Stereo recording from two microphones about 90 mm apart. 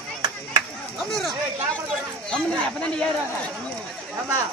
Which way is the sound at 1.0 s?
Centre (ahead or behind).